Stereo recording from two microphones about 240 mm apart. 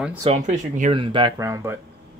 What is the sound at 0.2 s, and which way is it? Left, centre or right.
Speech, right.